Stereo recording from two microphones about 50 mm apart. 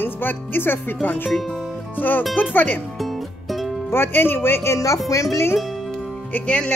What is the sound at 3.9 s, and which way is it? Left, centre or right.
Speech, left.